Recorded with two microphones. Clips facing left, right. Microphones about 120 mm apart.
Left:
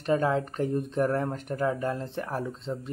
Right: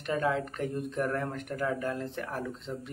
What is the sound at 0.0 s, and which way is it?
Speech, 35° left (ahead or behind).